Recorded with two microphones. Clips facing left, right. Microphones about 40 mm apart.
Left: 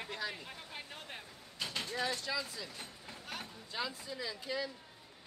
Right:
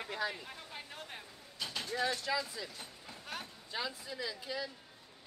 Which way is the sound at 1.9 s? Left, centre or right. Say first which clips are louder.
Right 4 dB; centre.